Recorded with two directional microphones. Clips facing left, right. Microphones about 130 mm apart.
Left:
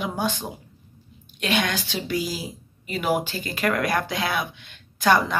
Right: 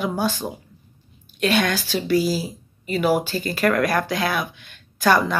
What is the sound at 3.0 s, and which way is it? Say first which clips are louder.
Speech: right 3 dB; 20° left (ahead or behind).